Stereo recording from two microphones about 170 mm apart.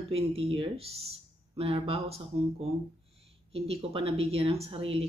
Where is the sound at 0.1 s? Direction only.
35° right (ahead or behind).